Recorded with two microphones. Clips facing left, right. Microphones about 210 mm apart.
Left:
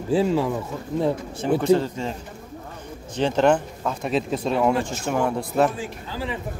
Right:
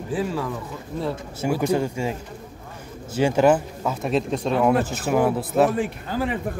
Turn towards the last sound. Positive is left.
turn(degrees=-55)  # may be behind; listen again after turning